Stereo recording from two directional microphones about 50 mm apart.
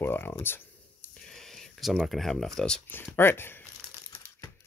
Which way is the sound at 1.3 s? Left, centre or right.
Centre.